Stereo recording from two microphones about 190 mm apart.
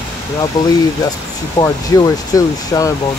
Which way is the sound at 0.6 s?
20° left (ahead or behind).